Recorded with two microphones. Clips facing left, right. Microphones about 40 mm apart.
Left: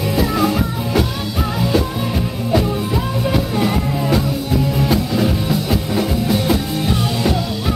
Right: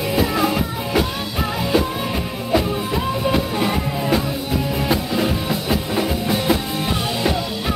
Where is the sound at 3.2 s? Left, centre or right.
Centre.